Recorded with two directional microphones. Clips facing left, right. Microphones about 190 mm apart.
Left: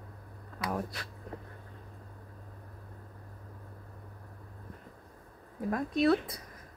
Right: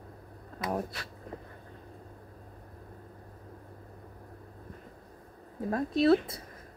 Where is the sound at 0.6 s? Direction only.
25° right (ahead or behind).